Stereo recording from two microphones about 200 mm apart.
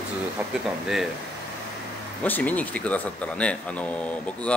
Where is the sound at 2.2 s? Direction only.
10° left (ahead or behind).